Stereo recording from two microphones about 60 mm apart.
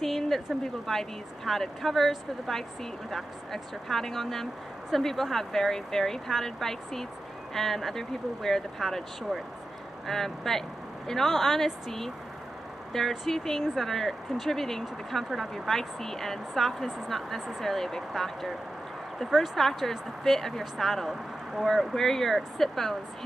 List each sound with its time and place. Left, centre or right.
0.0 s speech: centre